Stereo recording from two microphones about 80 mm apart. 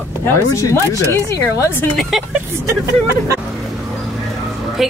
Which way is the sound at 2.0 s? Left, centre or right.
Centre.